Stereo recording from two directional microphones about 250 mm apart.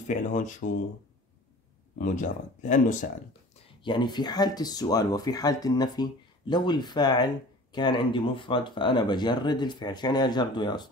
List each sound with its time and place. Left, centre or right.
0.1 s speech: left
2.0 s speech: left
3.5 s speech: centre